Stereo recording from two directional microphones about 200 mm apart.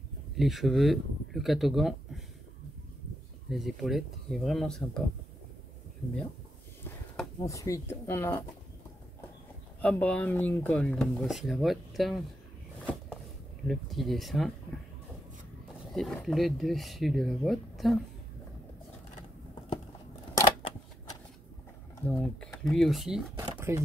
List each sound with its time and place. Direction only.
0.4 s speech: centre (ahead or behind)
3.4 s speech: centre (ahead or behind)
7.4 s speech: 15° left (ahead or behind)
9.8 s speech: 5° left (ahead or behind)
13.7 s speech: centre (ahead or behind)
15.9 s speech: centre (ahead or behind)
20.3 s a sound: 20° left (ahead or behind)
21.9 s speech: 10° left (ahead or behind)
23.7 s speech: 10° right (ahead or behind)